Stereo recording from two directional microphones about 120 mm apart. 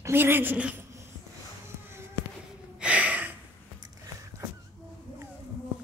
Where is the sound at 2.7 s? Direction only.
10° right (ahead or behind).